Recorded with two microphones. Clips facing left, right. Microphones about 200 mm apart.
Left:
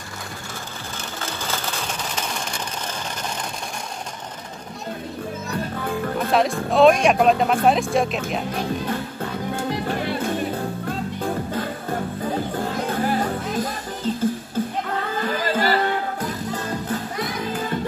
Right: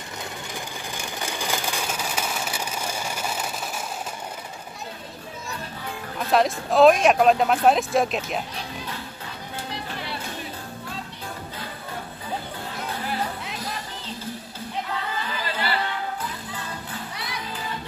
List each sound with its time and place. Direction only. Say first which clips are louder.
1.2 s a sound: even; 15° right (ahead or behind)
6.3 s speech: even; centre (ahead or behind)
8.5 s music: left 10 dB; 50° left (ahead or behind)
15.1 s music: left 7 dB; 45° left (ahead or behind)